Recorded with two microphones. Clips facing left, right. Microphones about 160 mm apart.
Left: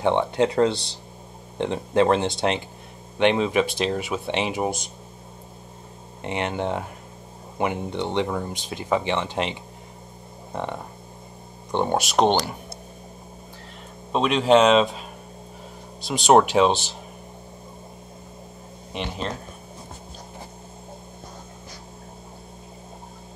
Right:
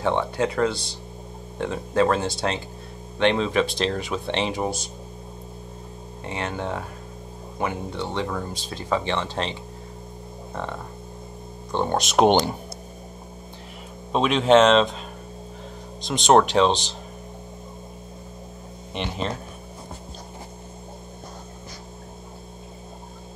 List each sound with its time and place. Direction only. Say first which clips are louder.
0.0 s speech: left 3 dB; 20° left (ahead or behind)
6.2 s speech: left 3 dB; 20° left (ahead or behind)
12.0 s speech: right 4 dB; centre (ahead or behind)
12.3 s speech: right 3 dB; 20° right (ahead or behind)
14.1 s speech: right 1 dB; centre (ahead or behind)
16.1 s speech: left 1 dB; 5° left (ahead or behind)
18.9 s speech: right 1 dB; centre (ahead or behind)